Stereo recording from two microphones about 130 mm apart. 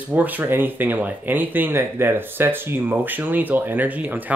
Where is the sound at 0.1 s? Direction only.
15° right (ahead or behind).